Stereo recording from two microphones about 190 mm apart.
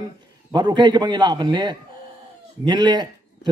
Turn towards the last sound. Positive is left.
turn(degrees=-25)  # may be behind; listen again after turning